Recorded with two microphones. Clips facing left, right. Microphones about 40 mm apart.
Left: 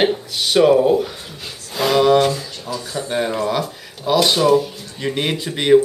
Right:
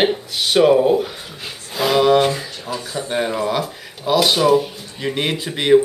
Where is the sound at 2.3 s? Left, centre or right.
Right.